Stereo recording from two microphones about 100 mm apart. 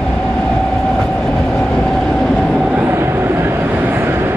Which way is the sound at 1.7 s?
5° left (ahead or behind).